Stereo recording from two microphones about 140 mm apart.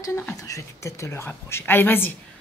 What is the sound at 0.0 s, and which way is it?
A child's voice, 25° left (ahead or behind).